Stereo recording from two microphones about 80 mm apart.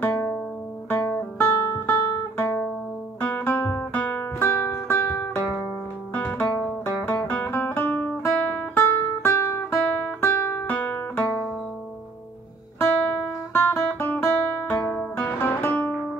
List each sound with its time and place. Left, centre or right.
0.0 s music: left
0.9 s guitar: left
3.3 s music: left
12.7 s guitar: left
13.5 s music: left